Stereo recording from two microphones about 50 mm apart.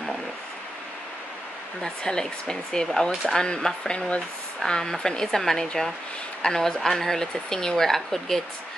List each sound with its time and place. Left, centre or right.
1.8 s a woman's voice: centre